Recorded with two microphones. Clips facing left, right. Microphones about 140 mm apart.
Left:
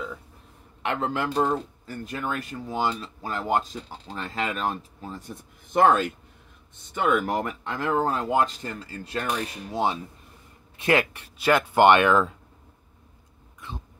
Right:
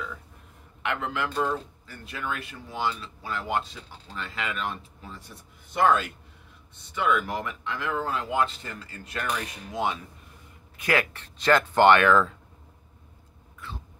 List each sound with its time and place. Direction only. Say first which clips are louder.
0.8 s speech: left 3 dB; 35° left (ahead or behind)
10.8 s speech: left 3 dB; 20° left (ahead or behind)
11.2 s speech: even; 10° left (ahead or behind)
13.6 s vehicle: left 2 dB; 20° left (ahead or behind)